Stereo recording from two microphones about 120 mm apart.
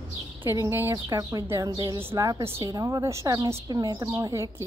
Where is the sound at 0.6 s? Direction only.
20° right (ahead or behind).